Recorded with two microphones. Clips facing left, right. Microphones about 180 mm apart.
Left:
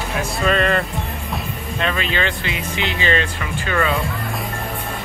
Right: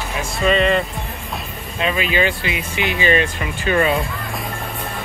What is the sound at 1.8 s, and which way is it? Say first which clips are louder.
Speech: right 3 dB; 10° right (ahead or behind).